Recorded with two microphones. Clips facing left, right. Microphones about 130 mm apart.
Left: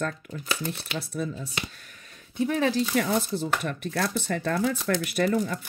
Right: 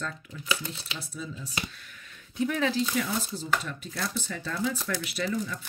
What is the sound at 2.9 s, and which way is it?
Speech, 55° left (ahead or behind).